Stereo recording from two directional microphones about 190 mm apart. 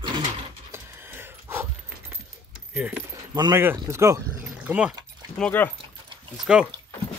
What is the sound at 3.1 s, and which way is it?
Speech, 20° right (ahead or behind).